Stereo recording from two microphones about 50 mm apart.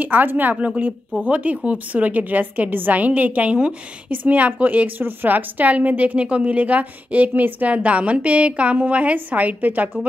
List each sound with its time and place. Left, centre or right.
0.0 s a woman's voice: right
7.7 s a woman's voice: right